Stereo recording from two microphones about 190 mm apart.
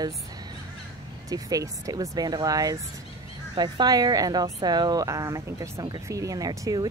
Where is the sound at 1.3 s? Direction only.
20° right (ahead or behind).